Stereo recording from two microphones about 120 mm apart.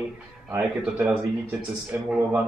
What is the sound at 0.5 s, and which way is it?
Speech, 10° right (ahead or behind).